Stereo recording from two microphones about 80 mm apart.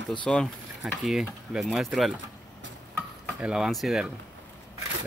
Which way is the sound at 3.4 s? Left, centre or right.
Centre.